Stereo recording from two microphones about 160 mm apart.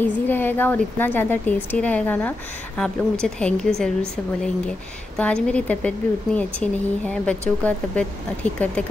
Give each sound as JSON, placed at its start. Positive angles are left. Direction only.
{"t": 0.0, "sound": "a woman's voice", "side_deg": 10}
{"t": 5.1, "sound": "a woman's voice", "side_deg": 5}